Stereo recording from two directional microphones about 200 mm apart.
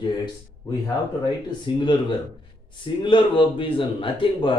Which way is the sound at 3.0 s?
25° left (ahead or behind).